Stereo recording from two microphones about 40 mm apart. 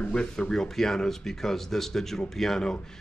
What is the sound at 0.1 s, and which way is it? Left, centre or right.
Speech, left.